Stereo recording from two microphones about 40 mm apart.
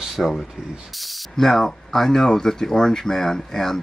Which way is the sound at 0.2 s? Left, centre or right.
Centre.